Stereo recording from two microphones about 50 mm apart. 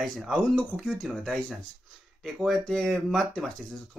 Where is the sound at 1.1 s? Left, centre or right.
Centre.